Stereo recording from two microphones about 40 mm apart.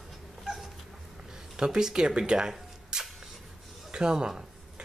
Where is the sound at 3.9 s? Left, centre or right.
Centre.